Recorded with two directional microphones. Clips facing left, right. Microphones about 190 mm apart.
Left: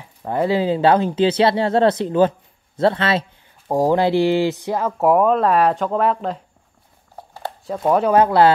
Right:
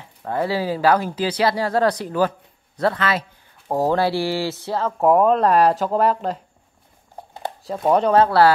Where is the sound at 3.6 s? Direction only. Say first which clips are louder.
Left 3 dB; 15° left (ahead or behind).